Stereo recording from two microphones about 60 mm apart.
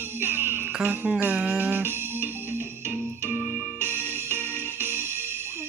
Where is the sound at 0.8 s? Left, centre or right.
Right.